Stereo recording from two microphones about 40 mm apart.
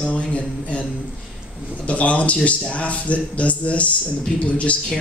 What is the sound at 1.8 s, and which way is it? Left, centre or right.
A man's voice, left.